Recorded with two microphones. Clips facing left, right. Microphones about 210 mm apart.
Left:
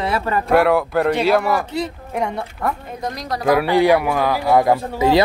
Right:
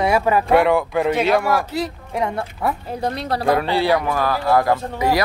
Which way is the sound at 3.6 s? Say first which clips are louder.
Left 4 dB; 15° left (ahead or behind).